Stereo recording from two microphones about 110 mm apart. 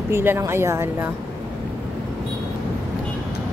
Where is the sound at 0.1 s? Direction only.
20° right (ahead or behind).